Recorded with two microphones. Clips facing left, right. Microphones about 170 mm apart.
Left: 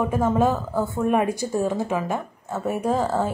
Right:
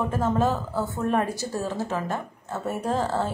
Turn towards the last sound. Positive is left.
turn(degrees=10)  # may be behind; listen again after turning